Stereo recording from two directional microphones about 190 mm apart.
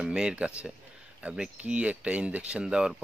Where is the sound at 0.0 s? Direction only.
5° right (ahead or behind).